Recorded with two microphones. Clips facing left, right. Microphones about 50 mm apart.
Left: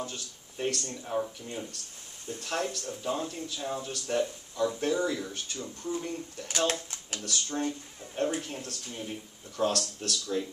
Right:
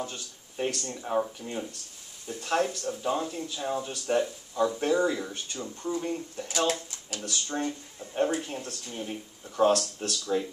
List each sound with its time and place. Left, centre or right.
0.0 s speech: right
6.7 s speech: left
7.2 s speech: right
8.9 s speech: centre
9.6 s speech: right